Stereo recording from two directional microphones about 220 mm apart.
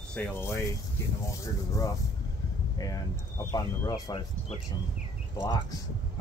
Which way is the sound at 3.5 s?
15° left (ahead or behind).